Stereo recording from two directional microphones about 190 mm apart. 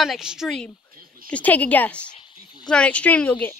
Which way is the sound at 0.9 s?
50° right (ahead or behind).